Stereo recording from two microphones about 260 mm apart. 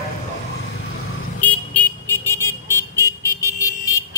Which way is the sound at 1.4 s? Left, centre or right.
Centre.